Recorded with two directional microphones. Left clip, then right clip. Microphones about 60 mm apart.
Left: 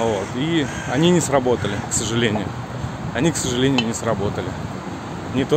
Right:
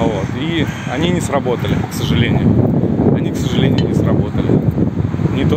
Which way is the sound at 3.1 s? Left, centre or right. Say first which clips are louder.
Right 3 dB; left.